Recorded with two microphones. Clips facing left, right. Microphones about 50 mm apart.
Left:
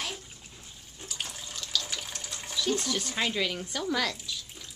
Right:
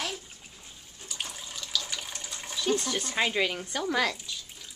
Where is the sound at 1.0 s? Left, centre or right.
Centre.